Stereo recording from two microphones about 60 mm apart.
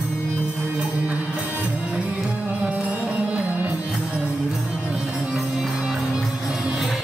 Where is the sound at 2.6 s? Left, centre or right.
Right.